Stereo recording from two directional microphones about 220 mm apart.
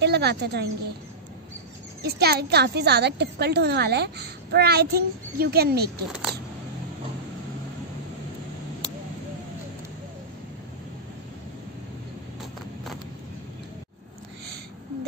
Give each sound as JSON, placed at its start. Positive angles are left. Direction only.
{"t": 0.0, "sound": "speech", "side_deg": -45}
{"t": 2.0, "sound": "speech", "side_deg": -45}